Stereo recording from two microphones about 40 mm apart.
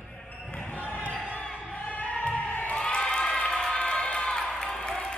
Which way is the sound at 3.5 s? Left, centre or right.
Centre.